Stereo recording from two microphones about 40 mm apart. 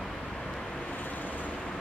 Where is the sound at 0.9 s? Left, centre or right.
Left.